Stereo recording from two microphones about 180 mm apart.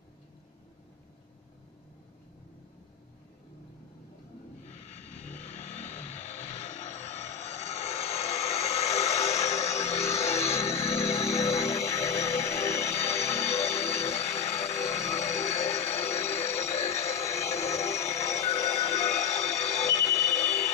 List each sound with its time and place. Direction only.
5.1 s vehicle: 40° left (ahead or behind)
11.1 s music: 35° left (ahead or behind)
12.0 s music: 15° left (ahead or behind)
12.4 s music: 35° left (ahead or behind)
14.9 s a sound: 35° left (ahead or behind)
17.3 s music: 35° left (ahead or behind)